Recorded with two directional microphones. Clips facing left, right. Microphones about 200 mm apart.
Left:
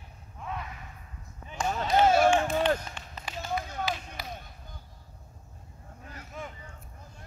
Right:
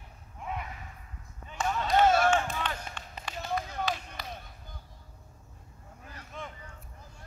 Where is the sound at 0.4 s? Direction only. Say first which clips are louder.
Even; 15° right (ahead or behind).